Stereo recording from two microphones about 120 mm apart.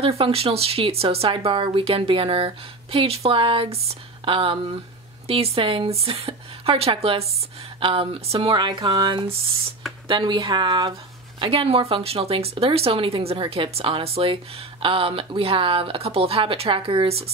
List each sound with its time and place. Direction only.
0.2 s a woman's voice: 55° right (ahead or behind)